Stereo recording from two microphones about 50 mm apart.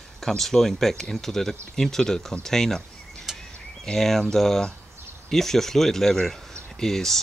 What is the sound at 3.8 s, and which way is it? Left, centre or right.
Speech, centre.